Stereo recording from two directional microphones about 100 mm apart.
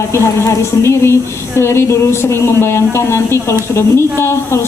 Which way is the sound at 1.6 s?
25° left (ahead or behind).